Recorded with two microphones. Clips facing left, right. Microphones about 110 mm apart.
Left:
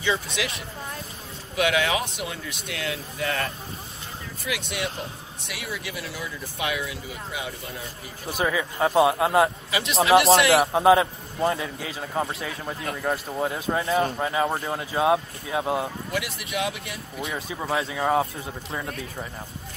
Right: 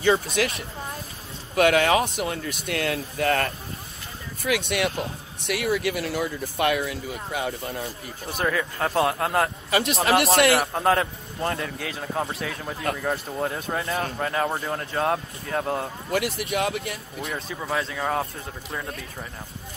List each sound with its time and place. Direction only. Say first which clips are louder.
0.4 s speech: right 5 dB; 50° right (ahead or behind)
8.3 s a man's voice: even; 5° left (ahead or behind)
9.7 s a man's voice: right 5 dB; 55° right (ahead or behind)
10.1 s a man's voice: left 3 dB; centre (ahead or behind)
16.4 s speech: right 3 dB; 65° right (ahead or behind)
17.2 s a man's voice: left 2 dB; 5° left (ahead or behind)